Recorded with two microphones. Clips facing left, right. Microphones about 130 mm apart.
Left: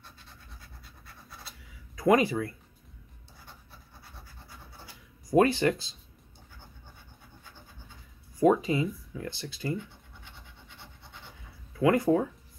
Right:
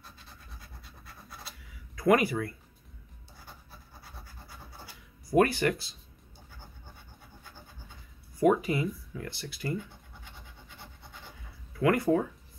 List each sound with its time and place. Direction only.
2.0 s speech: 20° left (ahead or behind)
5.3 s speech: 20° left (ahead or behind)
8.4 s speech: 25° left (ahead or behind)
11.8 s speech: 20° left (ahead or behind)